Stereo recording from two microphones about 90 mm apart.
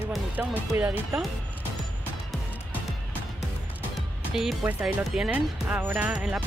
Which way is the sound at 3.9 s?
Centre (ahead or behind).